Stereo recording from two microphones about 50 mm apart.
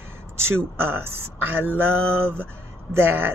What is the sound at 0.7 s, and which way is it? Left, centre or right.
A woman's voice, right.